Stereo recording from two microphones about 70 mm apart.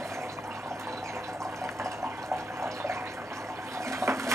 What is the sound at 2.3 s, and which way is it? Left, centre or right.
Water, right.